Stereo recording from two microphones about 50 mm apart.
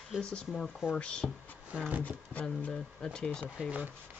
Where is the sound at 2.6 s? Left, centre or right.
Left.